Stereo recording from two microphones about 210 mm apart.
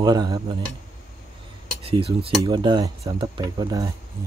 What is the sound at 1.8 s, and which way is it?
Speech, 25° right (ahead or behind).